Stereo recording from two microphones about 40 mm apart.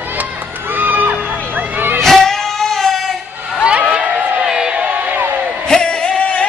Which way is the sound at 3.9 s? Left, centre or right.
Right.